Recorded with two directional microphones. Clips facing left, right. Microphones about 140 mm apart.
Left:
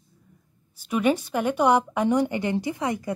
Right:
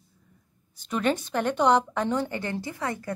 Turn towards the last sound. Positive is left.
turn(degrees=15)  # may be behind; listen again after turning